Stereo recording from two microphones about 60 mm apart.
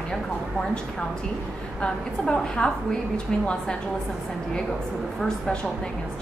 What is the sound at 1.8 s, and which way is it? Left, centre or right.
A woman's voice, centre.